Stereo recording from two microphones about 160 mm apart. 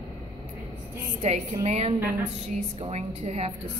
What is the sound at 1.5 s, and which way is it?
A woman's voice, 40° right (ahead or behind).